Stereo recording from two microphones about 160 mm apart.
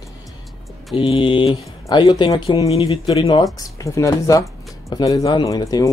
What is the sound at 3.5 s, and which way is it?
Speech, 20° left (ahead or behind).